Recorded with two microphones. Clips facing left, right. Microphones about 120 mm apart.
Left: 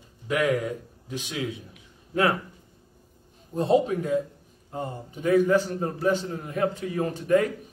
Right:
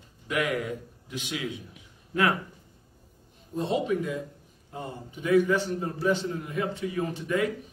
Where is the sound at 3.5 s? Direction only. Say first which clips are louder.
Left 5 dB; 40° left (ahead or behind).